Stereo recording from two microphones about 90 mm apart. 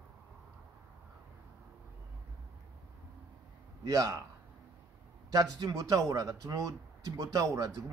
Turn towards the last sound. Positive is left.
turn(degrees=-45)  # may be behind; listen again after turning